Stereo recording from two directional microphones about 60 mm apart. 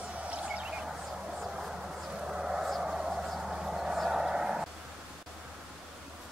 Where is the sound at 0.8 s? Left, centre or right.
Centre.